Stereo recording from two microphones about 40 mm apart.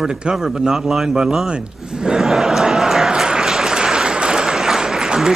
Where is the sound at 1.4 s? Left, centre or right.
Centre.